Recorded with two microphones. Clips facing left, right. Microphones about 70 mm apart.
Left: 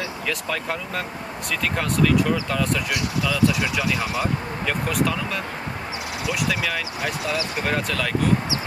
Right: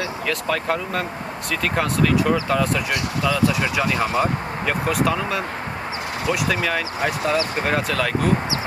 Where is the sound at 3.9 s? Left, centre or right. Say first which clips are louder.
Right 4 dB; right.